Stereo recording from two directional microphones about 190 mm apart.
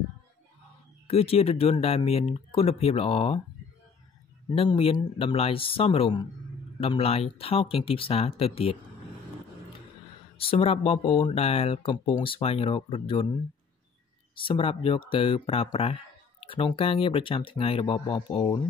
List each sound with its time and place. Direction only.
1.0 s speech: 30° left (ahead or behind)
4.5 s speech: 25° left (ahead or behind)
10.3 s speech: 30° left (ahead or behind)
14.3 s speech: 25° left (ahead or behind)